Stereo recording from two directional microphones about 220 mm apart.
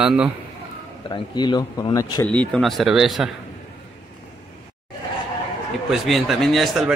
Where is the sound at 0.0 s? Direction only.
5° right (ahead or behind).